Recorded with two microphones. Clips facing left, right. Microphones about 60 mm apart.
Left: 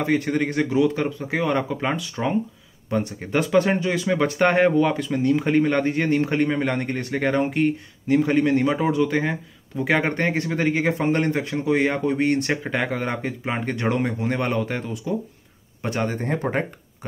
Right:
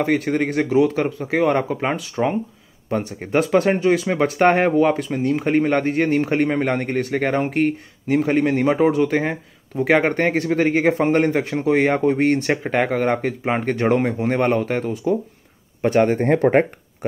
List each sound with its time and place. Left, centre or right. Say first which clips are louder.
0.0 s speech: right 2 dB; right
7.4 s speech: right 2 dB; right
16.3 s speech: right 9 dB; right